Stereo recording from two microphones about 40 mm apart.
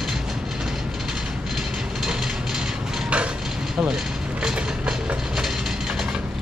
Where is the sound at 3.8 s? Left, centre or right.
Centre.